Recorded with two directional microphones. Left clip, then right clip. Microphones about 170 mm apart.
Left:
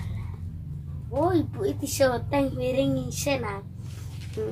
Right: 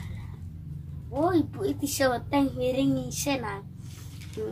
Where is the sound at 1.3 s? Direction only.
15° right (ahead or behind).